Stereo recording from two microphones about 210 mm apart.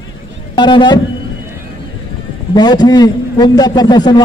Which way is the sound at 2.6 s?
20° left (ahead or behind).